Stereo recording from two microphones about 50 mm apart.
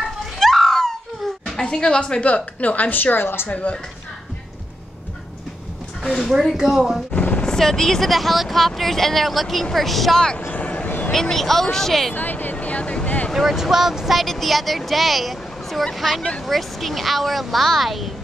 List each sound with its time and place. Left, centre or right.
0.4 s a sound: centre
1.6 s a woman's voice: centre; by 3.4 s left
3.4 s a woman's voice: left
6.5 s speech: centre
7.2 s music: left
7.4 s speech: centre
10.5 s a sound: left
11.1 s a woman's voice: centre
12.1 s a sound: left
13.3 s speech: centre
14.2 s speech: centre